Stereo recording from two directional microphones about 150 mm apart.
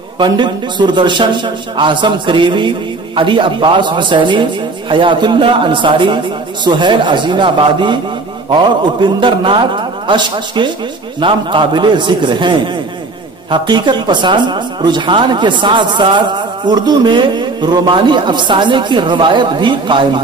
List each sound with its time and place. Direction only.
0.2 s speech: 30° right (ahead or behind)